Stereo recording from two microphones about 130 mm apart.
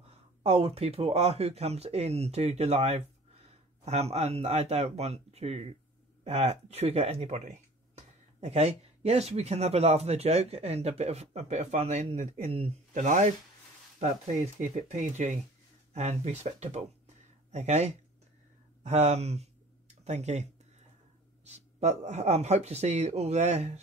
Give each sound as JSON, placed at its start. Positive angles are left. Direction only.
{"t": 0.4, "sound": "a man's voice", "side_deg": -50}
{"t": 12.9, "sound": "a man's voice", "side_deg": -65}
{"t": 21.5, "sound": "a man's voice", "side_deg": -55}